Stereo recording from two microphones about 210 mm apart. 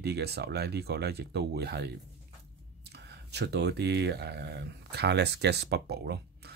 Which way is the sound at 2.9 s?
50° right (ahead or behind).